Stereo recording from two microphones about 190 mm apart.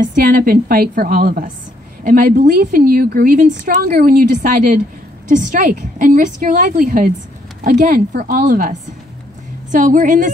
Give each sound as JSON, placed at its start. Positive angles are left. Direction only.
{"t": 0.0, "sound": "a woman's voice", "side_deg": -50}